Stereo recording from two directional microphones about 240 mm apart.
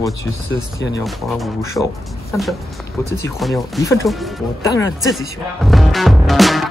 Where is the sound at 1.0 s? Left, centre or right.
Centre.